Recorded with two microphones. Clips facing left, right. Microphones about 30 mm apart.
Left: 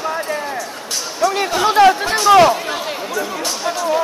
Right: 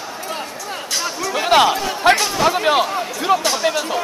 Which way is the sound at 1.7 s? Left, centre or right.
Left.